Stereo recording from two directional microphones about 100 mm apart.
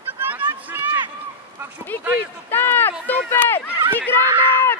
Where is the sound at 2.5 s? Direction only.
20° left (ahead or behind).